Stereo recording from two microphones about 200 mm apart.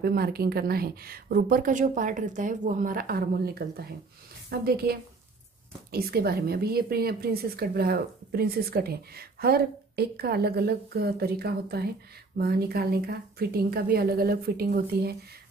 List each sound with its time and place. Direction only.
0.0 s speech: 50° right (ahead or behind)